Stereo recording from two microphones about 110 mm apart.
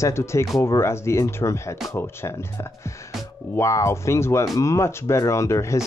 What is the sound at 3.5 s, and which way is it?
Speech, 25° left (ahead or behind).